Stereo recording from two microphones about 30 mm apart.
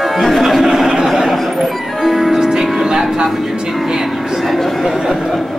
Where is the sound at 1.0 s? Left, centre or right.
Centre.